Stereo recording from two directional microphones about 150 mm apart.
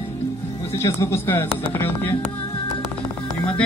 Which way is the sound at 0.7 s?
15° left (ahead or behind).